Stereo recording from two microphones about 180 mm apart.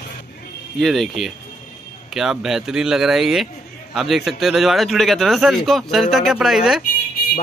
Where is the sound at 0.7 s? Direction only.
Centre (ahead or behind).